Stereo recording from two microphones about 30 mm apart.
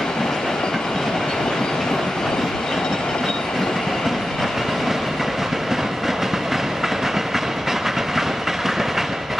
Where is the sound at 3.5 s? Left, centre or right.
Centre.